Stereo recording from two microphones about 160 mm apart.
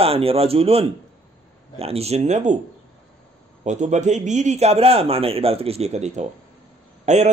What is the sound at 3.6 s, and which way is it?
Speech, 50° right (ahead or behind).